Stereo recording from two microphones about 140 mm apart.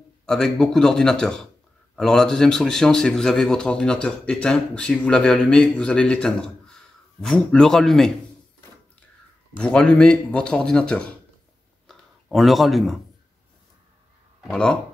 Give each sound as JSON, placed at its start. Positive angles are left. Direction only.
{"t": 0.3, "sound": "speech", "side_deg": 5}
{"t": 9.6, "sound": "speech", "side_deg": 5}
{"t": 14.5, "sound": "speech", "side_deg": 5}